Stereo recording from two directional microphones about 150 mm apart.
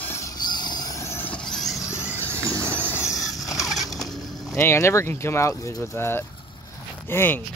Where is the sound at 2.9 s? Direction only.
20° left (ahead or behind).